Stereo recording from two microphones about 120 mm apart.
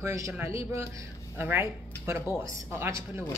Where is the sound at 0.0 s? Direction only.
25° right (ahead or behind).